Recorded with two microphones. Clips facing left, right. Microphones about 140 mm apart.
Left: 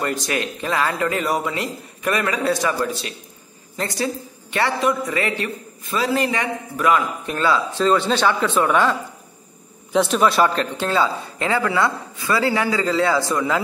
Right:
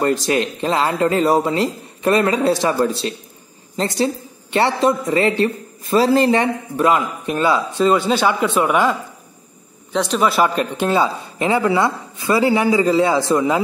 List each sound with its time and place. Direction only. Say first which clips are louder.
0.0 s a man's voice: right 6 dB; 25° right (ahead or behind)
7.0 s a man's voice: right 3 dB; 15° right (ahead or behind)
9.9 s a man's voice: even; centre (ahead or behind); by 13.6 s 20° right (ahead or behind)